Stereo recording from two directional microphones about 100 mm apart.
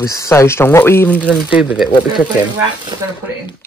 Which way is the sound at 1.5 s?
10° right (ahead or behind).